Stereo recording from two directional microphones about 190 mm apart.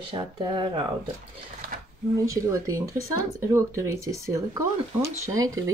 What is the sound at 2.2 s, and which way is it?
Speech, 15° right (ahead or behind).